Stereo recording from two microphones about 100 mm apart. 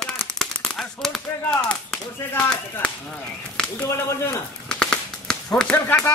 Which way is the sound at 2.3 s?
10° left (ahead or behind).